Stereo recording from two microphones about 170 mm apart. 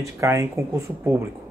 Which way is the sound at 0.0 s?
15° right (ahead or behind).